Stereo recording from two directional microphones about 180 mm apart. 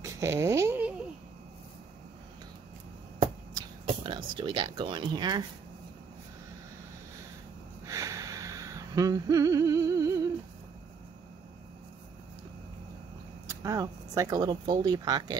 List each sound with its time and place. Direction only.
0.0 s a sound: 15° right (ahead or behind)
3.8 s speech: 25° right (ahead or behind)
7.8 s humming: 20° right (ahead or behind)
13.5 s speech: 15° right (ahead or behind)